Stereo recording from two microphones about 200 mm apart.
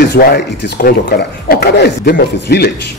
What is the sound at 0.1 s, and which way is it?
Speech, 55° left (ahead or behind).